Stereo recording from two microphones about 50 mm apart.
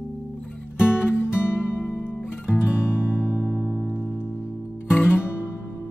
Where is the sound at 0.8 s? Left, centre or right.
Left.